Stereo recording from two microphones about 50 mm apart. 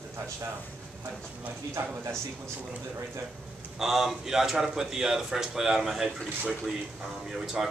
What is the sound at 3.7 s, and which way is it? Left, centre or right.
Speech, centre.